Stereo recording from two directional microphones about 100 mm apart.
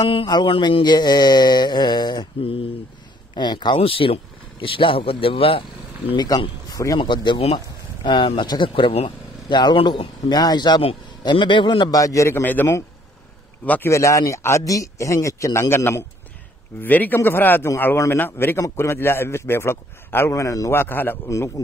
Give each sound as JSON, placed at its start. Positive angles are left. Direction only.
{"t": 0.5, "sound": "speech", "side_deg": 55}
{"t": 3.3, "sound": "speech", "side_deg": 50}
{"t": 3.8, "sound": "speech", "side_deg": 65}
{"t": 6.1, "sound": "speech", "side_deg": 40}
{"t": 6.7, "sound": "a sound", "side_deg": 35}
{"t": 7.0, "sound": "speech", "side_deg": 55}
{"t": 11.9, "sound": "a man's voice", "side_deg": 35}
{"t": 13.8, "sound": "a man's voice", "side_deg": 30}
{"t": 20.8, "sound": "a man's voice", "side_deg": 20}